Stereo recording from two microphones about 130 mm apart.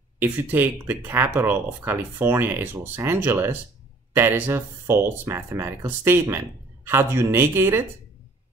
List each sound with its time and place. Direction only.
0.2 s speech: 15° right (ahead or behind)